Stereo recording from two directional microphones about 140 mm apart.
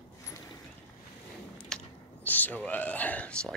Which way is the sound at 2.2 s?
10° left (ahead or behind).